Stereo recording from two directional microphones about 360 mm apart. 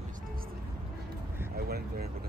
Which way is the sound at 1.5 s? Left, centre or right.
Right.